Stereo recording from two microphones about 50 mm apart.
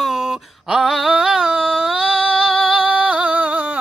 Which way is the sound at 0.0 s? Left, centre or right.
Centre.